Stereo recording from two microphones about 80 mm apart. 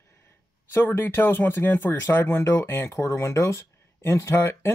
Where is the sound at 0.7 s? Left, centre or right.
Left.